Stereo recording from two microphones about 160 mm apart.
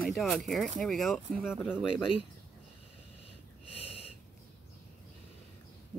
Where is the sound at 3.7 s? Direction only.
40° left (ahead or behind).